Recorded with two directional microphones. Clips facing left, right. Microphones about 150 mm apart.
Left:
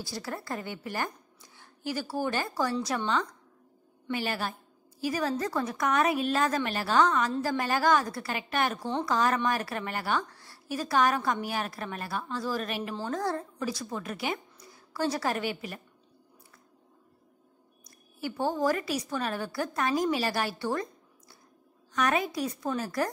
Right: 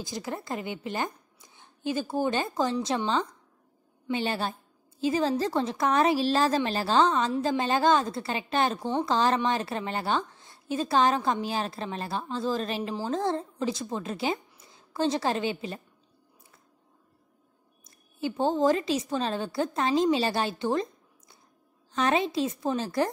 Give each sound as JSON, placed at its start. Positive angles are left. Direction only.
{"t": 0.0, "sound": "a woman's voice", "side_deg": -20}
{"t": 8.7, "sound": "speech", "side_deg": -10}
{"t": 9.0, "sound": "a woman's voice", "side_deg": -25}
{"t": 17.8, "sound": "a woman's voice", "side_deg": -20}